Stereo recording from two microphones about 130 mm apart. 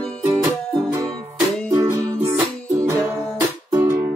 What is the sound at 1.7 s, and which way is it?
Music, 20° right (ahead or behind).